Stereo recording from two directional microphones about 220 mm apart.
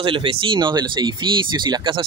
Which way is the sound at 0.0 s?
25° right (ahead or behind).